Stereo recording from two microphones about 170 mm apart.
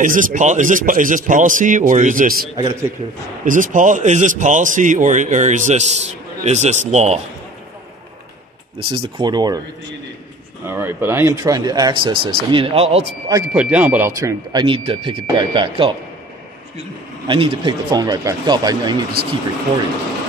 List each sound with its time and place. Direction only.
0.0 s a man's voice: 50° right (ahead or behind)
2.5 s speech: 25° right (ahead or behind)
3.4 s a man's voice: 50° right (ahead or behind)
8.7 s speech: 30° right (ahead or behind)
10.7 s speech: 10° right (ahead or behind); by 13.0 s 35° right (ahead or behind)
13.3 s speech: 15° right (ahead or behind)
17.3 s speech: 30° right (ahead or behind)